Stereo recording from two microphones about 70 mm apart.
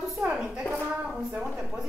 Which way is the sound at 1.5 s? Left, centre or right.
Centre.